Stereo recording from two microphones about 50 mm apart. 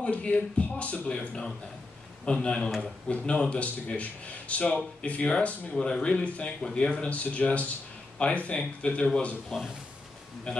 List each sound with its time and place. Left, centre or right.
0.0 s a man's voice: left
9.5 s speech: centre
10.5 s speech: centre